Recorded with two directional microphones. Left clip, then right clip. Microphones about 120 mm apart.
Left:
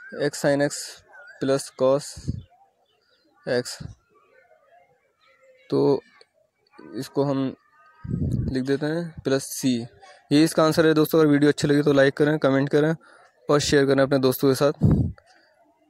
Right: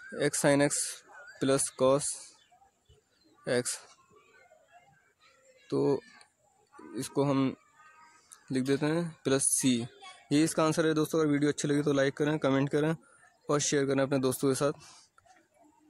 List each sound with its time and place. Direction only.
0.1 s speech: 25° left (ahead or behind)
3.4 s speech: 25° left (ahead or behind)
5.7 s speech: 40° left (ahead or behind)
6.9 s speech: 30° left (ahead or behind)
7.2 s speech: 15° left (ahead or behind)
8.5 s speech: 25° left (ahead or behind)
10.2 s speech: 45° left (ahead or behind)